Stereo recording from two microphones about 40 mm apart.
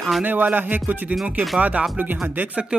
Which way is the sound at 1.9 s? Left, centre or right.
Right.